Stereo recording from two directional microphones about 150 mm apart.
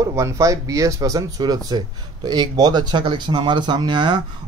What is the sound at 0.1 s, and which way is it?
Speech, 20° right (ahead or behind).